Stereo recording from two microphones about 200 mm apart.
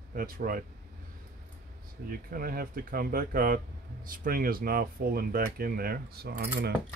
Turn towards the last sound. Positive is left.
turn(degrees=-50)  # may be behind; listen again after turning